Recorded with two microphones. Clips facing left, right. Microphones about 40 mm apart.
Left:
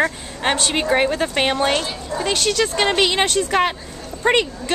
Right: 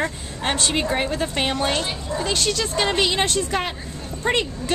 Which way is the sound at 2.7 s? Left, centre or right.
Centre.